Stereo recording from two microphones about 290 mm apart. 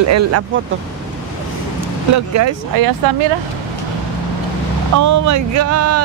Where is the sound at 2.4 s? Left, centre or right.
Right.